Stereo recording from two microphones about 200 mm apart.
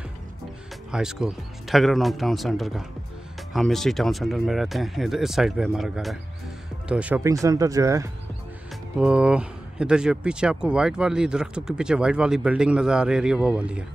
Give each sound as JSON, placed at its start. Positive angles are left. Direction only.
{"t": 0.9, "sound": "speech", "side_deg": -5}
{"t": 8.9, "sound": "speech", "side_deg": -5}